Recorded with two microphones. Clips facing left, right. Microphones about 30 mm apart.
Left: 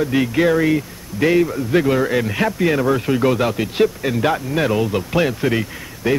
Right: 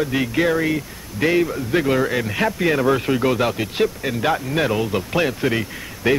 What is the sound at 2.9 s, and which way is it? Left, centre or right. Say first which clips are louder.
Speech: even; centre.